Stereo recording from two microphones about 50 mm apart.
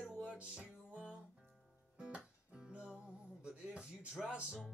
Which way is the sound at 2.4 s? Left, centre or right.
Centre.